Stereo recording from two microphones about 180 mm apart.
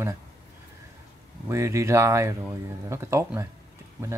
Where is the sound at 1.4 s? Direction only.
15° right (ahead or behind).